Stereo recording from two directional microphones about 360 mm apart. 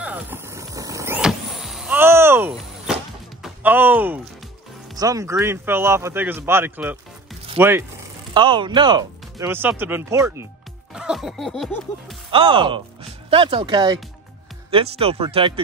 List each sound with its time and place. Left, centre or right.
0.0 s vehicle: centre
3.4 s music: centre
4.9 s speech: centre
10.9 s music: centre
12.3 s speech: centre